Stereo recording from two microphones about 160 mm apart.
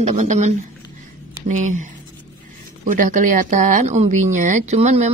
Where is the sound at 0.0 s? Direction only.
45° right (ahead or behind).